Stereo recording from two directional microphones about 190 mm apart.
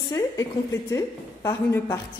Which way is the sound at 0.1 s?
15° left (ahead or behind).